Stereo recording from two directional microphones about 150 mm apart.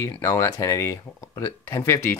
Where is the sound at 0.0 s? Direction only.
20° left (ahead or behind).